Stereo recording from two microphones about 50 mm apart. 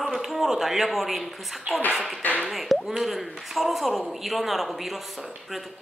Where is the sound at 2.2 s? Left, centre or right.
Left.